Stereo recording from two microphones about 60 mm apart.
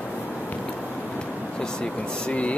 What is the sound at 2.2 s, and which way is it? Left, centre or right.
Speech, left.